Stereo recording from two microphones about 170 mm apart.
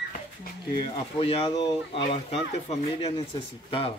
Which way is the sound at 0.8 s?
30° left (ahead or behind).